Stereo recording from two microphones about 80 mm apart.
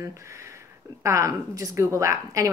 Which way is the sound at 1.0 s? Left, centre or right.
Right.